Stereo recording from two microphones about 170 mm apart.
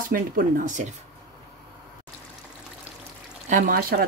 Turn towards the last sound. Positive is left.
turn(degrees=-60)  # may be behind; listen again after turning